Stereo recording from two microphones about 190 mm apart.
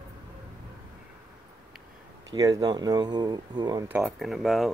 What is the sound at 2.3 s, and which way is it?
Speech, 20° right (ahead or behind).